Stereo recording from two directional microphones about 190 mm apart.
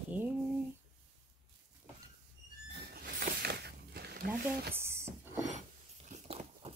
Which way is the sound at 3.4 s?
60° right (ahead or behind).